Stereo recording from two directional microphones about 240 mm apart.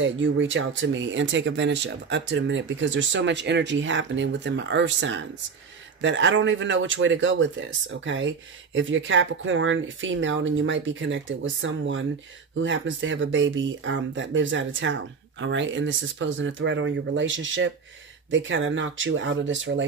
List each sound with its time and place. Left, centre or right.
0.0 s speech: right